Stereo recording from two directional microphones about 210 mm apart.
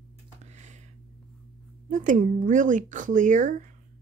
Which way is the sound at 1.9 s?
40° right (ahead or behind).